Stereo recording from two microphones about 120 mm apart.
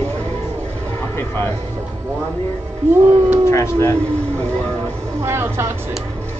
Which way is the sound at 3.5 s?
25° left (ahead or behind).